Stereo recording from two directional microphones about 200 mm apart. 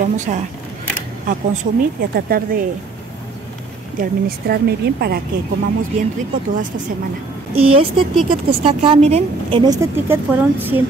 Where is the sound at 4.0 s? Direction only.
50° right (ahead or behind).